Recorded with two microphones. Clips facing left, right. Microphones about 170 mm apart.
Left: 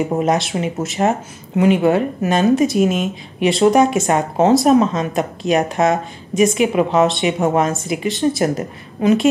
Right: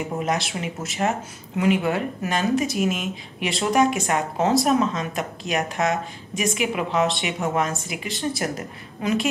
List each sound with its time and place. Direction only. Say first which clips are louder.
0.2 s speech: left 8 dB; 25° left (ahead or behind)
7.3 s a woman's voice: left 7 dB; 35° left (ahead or behind)